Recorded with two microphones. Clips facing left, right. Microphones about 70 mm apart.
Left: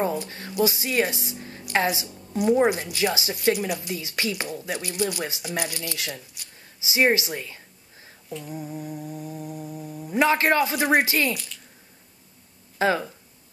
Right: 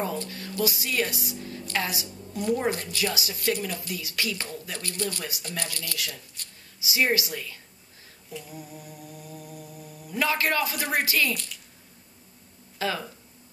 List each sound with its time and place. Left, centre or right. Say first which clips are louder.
0.3 s a woman's voice: left 4 dB; left
2.3 s speech: left 6 dB; centre
3.0 s humming: left 4 dB; left
3.5 s speech: left 4 dB; centre
5.4 s humming: left 5 dB; centre
11.2 s speech: left 3 dB; centre
12.7 s speech: left 7 dB; left